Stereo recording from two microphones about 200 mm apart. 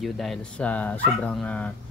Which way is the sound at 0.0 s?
Centre (ahead or behind).